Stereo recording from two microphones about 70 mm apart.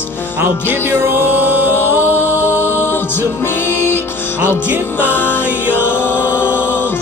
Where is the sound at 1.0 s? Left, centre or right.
Right.